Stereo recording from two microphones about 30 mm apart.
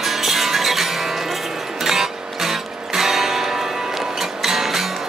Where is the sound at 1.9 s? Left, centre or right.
Centre.